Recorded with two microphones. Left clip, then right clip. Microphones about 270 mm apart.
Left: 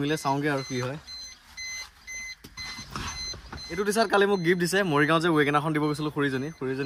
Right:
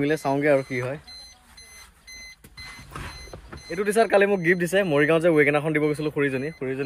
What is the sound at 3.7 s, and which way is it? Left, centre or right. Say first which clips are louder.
Speech: right 4 dB; centre.